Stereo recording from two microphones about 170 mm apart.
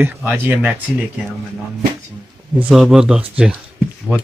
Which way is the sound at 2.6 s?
Centre (ahead or behind).